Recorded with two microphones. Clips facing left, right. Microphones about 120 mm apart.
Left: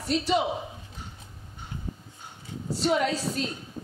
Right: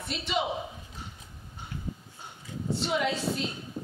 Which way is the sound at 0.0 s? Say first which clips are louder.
Left 8 dB; 40° left (ahead or behind).